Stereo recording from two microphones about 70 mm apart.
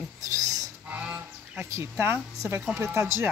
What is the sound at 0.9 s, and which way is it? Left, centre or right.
Goose, right.